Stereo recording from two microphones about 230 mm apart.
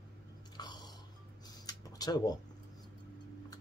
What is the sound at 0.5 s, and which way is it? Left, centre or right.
Chewing, centre.